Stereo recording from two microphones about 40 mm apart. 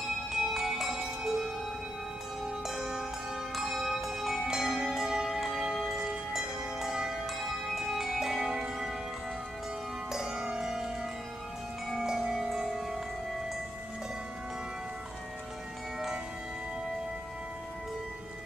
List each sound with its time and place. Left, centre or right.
0.3 s music: centre
2.4 s music: centre
3.5 s bell: centre
4.5 s music: centre
7.2 s bell: centre
10.1 s music: centre
12.1 s music: centre